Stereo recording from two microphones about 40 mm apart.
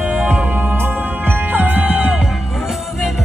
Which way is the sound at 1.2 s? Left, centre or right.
Right.